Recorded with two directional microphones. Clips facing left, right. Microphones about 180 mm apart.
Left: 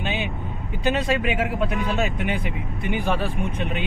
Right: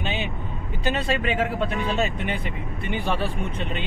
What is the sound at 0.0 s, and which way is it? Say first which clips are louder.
Vehicle: left 1 dB; 15° left (ahead or behind).